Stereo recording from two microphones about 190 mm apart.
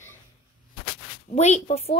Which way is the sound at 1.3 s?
35° left (ahead or behind).